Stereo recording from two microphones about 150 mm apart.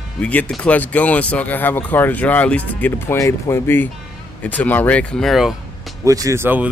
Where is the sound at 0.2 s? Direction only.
10° left (ahead or behind).